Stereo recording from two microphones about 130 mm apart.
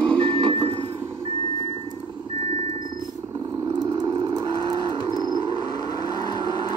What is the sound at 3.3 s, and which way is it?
Vehicle, 30° right (ahead or behind).